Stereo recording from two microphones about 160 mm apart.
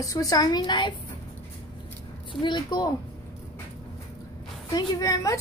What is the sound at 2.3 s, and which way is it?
Speech, 30° left (ahead or behind).